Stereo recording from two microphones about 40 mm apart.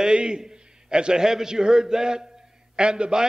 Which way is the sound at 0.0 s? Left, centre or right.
Right.